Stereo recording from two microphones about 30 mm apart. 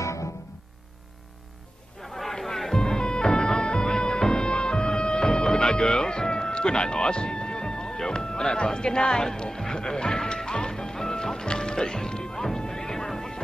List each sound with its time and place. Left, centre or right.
2.0 s a sound: centre
2.3 s music: centre
2.8 s music: left
8.5 s speech: left
9.8 s music: left
11.3 s music: left